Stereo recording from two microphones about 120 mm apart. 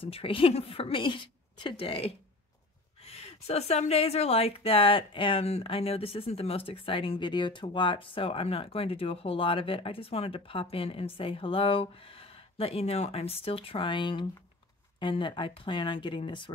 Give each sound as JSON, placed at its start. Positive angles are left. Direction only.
{"t": 0.0, "sound": "a woman's voice", "side_deg": 50}